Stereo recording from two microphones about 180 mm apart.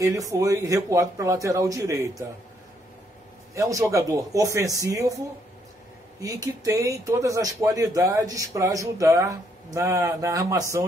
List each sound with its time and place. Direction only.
0.0 s speech: 15° right (ahead or behind)
3.5 s speech: 15° right (ahead or behind)
6.2 s speech: 20° right (ahead or behind)